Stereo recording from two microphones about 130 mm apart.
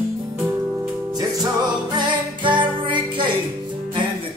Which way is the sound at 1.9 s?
35° right (ahead or behind).